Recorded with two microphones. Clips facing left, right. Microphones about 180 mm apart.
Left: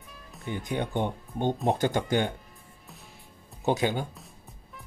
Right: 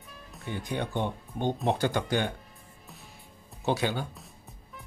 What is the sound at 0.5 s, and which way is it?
Speech, 20° left (ahead or behind).